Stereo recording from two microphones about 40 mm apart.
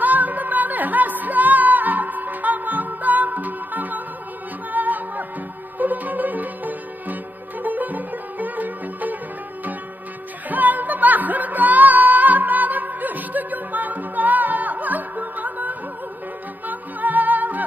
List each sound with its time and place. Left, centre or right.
0.0 s music: right
10.5 s music: right